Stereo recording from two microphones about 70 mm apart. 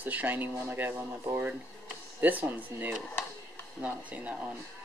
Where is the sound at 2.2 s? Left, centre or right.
Right.